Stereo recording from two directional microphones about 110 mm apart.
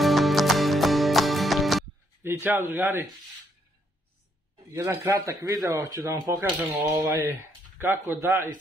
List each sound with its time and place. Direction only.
0.0 s music: centre (ahead or behind)
2.2 s speech: 20° right (ahead or behind)
4.6 s speech: 25° right (ahead or behind)
6.7 s speech: 15° right (ahead or behind)